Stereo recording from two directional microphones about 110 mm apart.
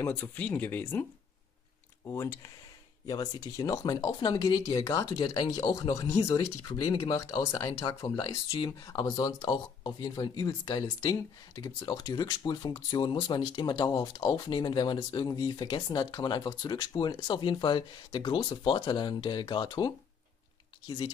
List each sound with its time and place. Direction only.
0.1 s speech: 15° left (ahead or behind)
2.0 s speech: 30° left (ahead or behind)
5.3 s speech: 45° left (ahead or behind)
5.7 s speech: 30° left (ahead or behind)
20.8 s speech: 50° left (ahead or behind)